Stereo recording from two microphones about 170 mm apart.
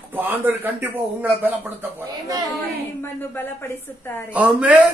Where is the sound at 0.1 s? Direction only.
10° right (ahead or behind).